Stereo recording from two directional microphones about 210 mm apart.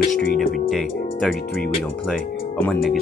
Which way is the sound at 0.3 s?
45° left (ahead or behind).